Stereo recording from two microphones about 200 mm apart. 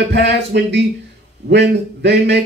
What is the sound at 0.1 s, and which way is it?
A woman's voice, 60° right (ahead or behind).